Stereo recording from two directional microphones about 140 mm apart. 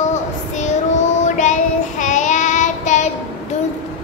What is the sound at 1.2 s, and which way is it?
Child singing, 60° left (ahead or behind).